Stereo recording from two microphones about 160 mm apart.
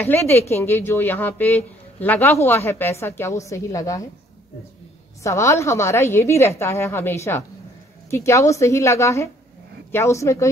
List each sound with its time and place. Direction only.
0.0 s speech: 15° left (ahead or behind)
5.2 s speech: 20° left (ahead or behind)